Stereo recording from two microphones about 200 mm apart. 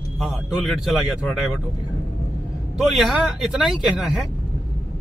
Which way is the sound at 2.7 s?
Centre (ahead or behind).